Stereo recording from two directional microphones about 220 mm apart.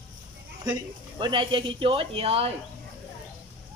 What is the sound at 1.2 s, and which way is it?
Speech, 20° right (ahead or behind).